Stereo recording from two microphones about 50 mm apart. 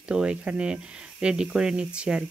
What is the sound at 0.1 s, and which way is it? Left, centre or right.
Speech, right.